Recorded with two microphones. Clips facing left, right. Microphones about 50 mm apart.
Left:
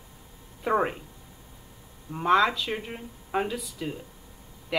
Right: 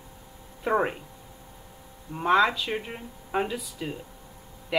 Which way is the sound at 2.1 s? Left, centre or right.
Centre.